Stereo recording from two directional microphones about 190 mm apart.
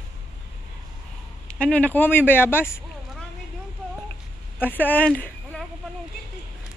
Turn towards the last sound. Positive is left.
turn(degrees=5)  # may be behind; listen again after turning